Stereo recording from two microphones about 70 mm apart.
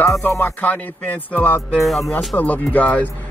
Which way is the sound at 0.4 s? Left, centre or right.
Left.